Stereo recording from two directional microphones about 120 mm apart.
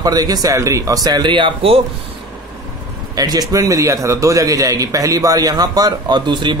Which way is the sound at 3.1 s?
30° right (ahead or behind).